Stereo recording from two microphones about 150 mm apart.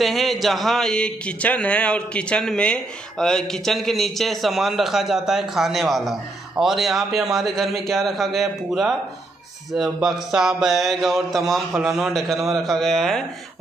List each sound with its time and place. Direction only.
0.0 s a man's voice: centre (ahead or behind)